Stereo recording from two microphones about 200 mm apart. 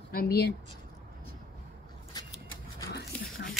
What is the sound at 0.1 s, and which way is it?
Speech, 50° left (ahead or behind).